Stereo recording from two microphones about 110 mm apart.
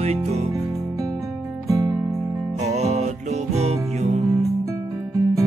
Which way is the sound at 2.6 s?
85° right.